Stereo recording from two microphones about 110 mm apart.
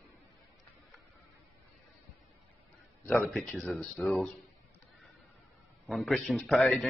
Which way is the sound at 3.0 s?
Centre (ahead or behind).